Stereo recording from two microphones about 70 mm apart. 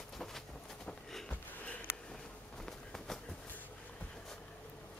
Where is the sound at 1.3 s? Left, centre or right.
Centre.